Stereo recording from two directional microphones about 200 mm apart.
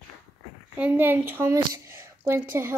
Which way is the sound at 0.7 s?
10° right (ahead or behind).